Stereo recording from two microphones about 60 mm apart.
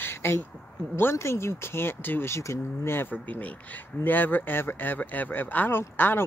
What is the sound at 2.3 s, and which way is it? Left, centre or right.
Speech, left.